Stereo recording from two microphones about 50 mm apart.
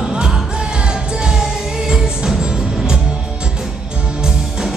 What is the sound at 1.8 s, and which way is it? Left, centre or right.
Music, centre.